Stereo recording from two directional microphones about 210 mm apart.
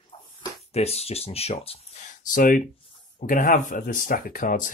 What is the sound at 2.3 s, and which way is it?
Speech, 40° left (ahead or behind).